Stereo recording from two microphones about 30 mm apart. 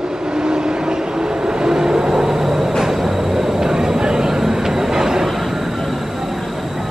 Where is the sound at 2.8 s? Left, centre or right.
Centre.